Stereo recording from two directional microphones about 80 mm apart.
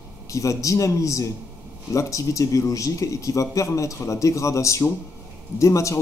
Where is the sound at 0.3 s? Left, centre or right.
Left.